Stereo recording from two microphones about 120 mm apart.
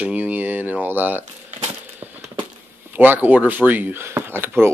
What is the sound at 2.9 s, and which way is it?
Speech, 15° right (ahead or behind).